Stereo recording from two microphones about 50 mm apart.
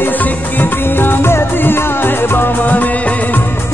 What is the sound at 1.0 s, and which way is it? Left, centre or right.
Music, left.